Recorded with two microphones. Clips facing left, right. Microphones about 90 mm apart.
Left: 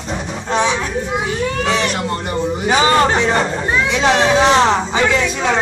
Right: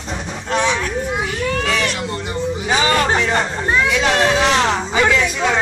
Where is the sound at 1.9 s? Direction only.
45° left (ahead or behind).